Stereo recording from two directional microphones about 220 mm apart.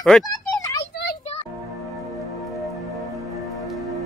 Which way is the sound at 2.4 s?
Centre (ahead or behind).